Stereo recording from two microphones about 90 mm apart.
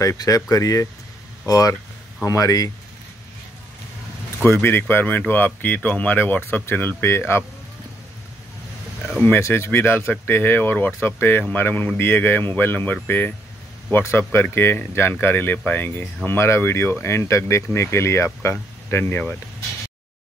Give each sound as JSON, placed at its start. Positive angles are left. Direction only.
{"t": 0.2, "sound": "speech", "side_deg": 40}
{"t": 4.4, "sound": "speech", "side_deg": 20}
{"t": 9.4, "sound": "speech", "side_deg": 30}